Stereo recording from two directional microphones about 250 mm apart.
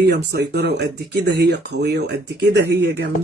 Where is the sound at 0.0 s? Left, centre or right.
Right.